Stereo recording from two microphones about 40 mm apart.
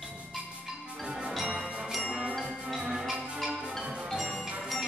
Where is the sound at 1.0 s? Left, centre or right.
Right.